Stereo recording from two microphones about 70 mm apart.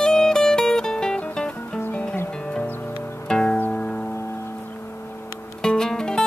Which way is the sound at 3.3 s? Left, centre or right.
Centre.